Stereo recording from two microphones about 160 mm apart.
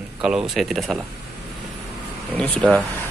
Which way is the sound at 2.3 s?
5° left (ahead or behind).